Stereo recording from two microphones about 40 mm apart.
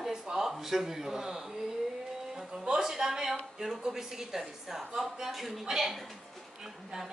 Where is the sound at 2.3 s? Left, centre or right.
Centre.